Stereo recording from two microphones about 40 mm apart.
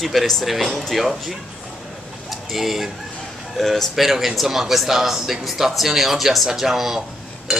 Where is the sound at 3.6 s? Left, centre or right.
Centre.